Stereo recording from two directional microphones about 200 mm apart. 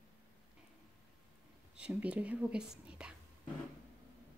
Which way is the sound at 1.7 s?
5° right (ahead or behind).